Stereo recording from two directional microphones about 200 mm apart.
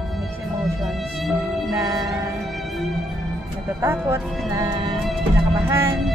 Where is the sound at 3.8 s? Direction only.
15° right (ahead or behind).